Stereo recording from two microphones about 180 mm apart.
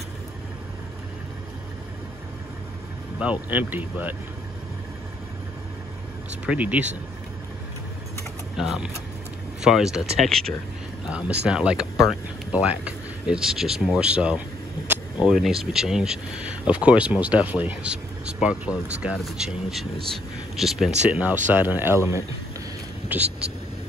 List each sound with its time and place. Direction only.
3.2 s speech: 10° right (ahead or behind)
6.4 s speech: 10° right (ahead or behind)
8.5 s speech: 5° right (ahead or behind)
14.9 s a sound: 5° right (ahead or behind)
15.6 s speech: 5° right (ahead or behind)